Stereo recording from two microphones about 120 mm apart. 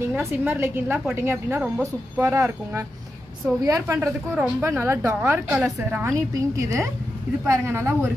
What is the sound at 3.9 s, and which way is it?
A woman's voice, 15° right (ahead or behind).